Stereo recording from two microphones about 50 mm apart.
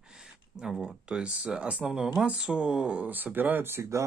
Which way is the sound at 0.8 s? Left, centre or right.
Centre.